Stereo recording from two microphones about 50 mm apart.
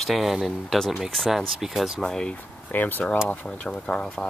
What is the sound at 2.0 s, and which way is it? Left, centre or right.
Speech, centre.